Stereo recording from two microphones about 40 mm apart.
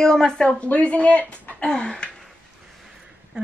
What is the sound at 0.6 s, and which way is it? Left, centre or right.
Speech, left.